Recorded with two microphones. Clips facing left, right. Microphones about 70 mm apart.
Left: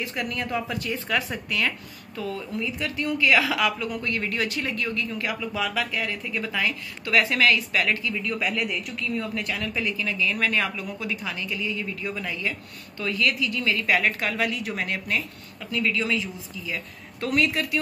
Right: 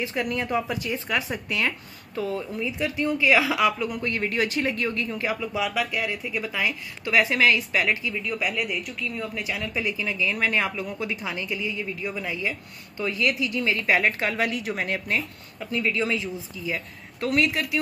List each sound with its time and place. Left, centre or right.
0.0 s a woman's voice: centre
17.2 s a woman's voice: centre